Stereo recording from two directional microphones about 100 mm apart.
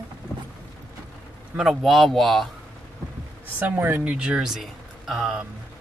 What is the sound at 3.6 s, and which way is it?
Speech, 20° right (ahead or behind).